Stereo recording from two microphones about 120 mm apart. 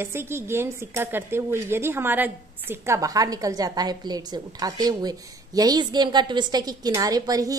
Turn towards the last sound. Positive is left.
turn(degrees=-30)  # may be behind; listen again after turning